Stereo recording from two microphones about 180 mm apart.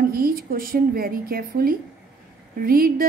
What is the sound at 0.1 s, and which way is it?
A woman's voice, 55° right (ahead or behind).